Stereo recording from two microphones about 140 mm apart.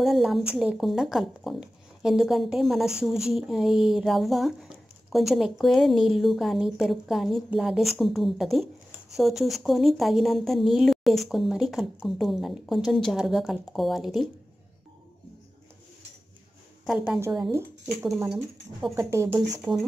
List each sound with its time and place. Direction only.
0.0 s speech: centre (ahead or behind)
16.8 s a woman's voice: 5° right (ahead or behind)
17.4 s speech: 20° right (ahead or behind)
18.3 s speech: centre (ahead or behind)
18.9 s speech: 20° right (ahead or behind)